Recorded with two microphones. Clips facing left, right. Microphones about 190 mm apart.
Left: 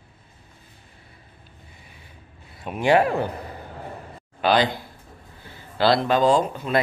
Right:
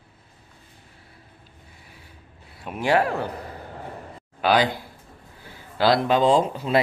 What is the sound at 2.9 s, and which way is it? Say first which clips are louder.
Speech: left 2 dB; 15° left (ahead or behind).